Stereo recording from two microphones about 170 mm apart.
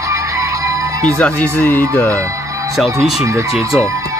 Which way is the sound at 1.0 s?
5° left (ahead or behind).